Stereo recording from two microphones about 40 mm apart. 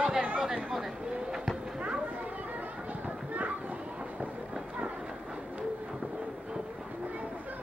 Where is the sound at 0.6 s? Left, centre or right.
Centre.